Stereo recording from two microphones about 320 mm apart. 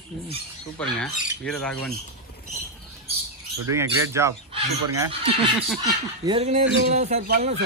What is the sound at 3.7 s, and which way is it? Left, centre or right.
Speech, centre.